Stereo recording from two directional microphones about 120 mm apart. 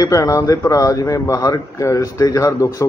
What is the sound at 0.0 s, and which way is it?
Speech, 30° left (ahead or behind).